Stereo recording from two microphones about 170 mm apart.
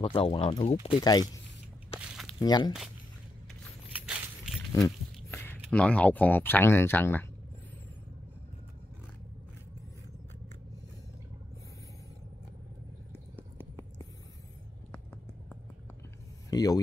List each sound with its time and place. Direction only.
0.0 s speech: 30° left (ahead or behind)
2.0 s walk: 5° right (ahead or behind)
2.4 s speech: 25° left (ahead or behind)
3.9 s a sound: 5° right (ahead or behind)
4.7 s speech: 15° left (ahead or behind)
16.4 s speech: 20° left (ahead or behind)